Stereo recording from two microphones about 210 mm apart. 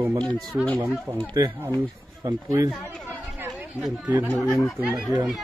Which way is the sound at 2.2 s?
15° right (ahead or behind).